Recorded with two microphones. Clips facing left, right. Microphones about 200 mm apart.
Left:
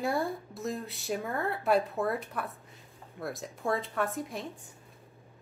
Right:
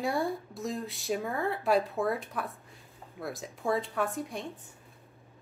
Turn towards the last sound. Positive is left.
turn(degrees=0)  # may be behind; listen again after turning